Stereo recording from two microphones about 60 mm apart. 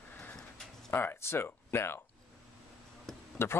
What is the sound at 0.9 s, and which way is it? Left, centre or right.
Speech, left.